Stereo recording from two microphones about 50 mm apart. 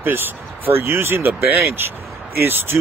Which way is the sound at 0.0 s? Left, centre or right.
Right.